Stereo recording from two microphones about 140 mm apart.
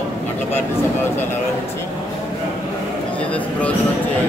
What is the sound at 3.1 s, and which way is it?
Speech, 10° left (ahead or behind).